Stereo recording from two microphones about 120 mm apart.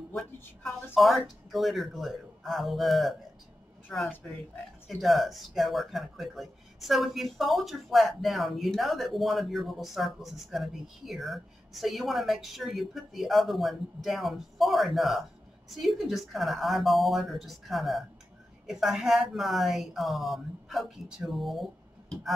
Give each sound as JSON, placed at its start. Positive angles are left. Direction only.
{"t": 0.1, "sound": "a woman's voice", "side_deg": 5}